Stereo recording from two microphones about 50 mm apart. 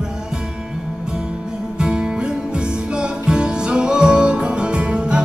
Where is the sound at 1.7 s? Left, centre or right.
Centre.